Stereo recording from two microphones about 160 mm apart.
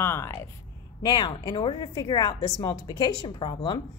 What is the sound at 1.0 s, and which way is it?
A woman's voice, 25° left (ahead or behind).